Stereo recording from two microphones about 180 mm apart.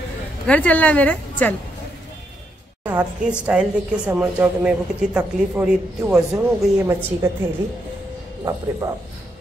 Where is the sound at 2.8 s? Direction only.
10° right (ahead or behind).